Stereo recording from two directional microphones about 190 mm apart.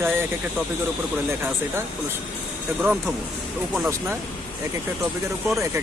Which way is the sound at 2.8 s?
10° right (ahead or behind).